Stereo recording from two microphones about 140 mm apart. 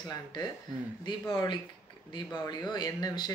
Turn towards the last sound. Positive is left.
turn(degrees=30)  # may be behind; listen again after turning